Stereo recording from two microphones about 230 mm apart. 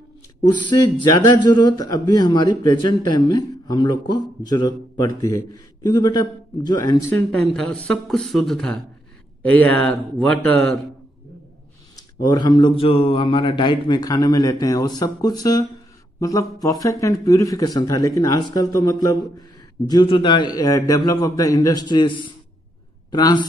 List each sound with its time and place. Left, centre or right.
1.3 s a man's voice: centre
12.2 s a man's voice: centre
23.1 s a man's voice: centre